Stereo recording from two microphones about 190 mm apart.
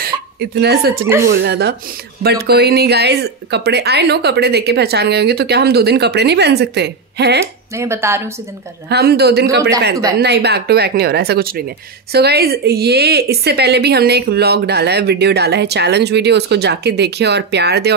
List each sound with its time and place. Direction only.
0.6 s a woman's voice: 55° right (ahead or behind)
7.7 s speech: 15° right (ahead or behind)
8.8 s a woman's voice: 55° right (ahead or behind)